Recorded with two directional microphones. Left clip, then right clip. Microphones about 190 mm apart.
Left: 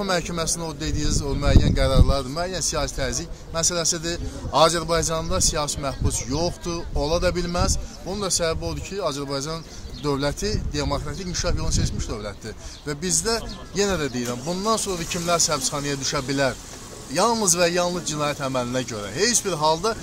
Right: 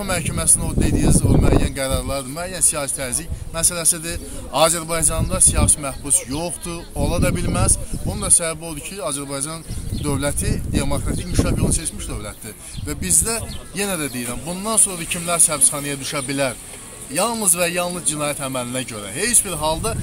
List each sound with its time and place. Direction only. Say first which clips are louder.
0.0 s speech: even; 20° left (ahead or behind)
12.8 s speech: right 1 dB; 20° left (ahead or behind)